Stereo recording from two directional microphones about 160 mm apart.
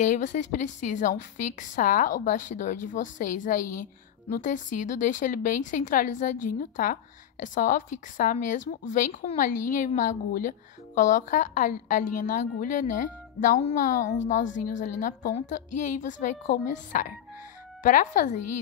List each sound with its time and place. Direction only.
0.0 s a woman's voice: 50° left (ahead or behind)